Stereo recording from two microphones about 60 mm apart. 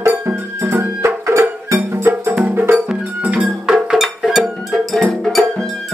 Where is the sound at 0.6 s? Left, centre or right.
Right.